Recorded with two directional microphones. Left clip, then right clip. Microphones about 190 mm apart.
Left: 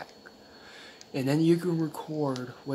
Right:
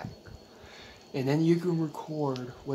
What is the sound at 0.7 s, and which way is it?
Speech, centre (ahead or behind).